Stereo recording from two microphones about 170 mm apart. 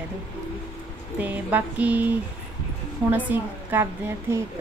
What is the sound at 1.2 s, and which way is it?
Speech, 10° right (ahead or behind).